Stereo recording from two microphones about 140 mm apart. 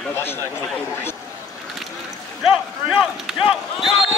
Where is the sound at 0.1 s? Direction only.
15° left (ahead or behind).